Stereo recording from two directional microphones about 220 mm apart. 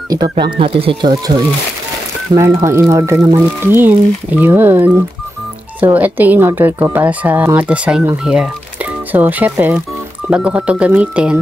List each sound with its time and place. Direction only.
0.1 s speech: 20° right (ahead or behind)
2.6 s speech: 15° right (ahead or behind)